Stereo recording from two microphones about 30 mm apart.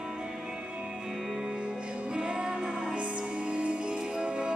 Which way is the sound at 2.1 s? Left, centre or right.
Right.